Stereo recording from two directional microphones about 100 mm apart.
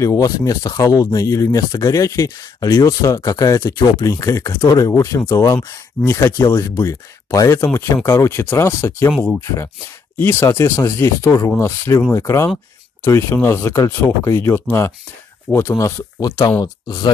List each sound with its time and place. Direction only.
0.0 s speech: 30° left (ahead or behind)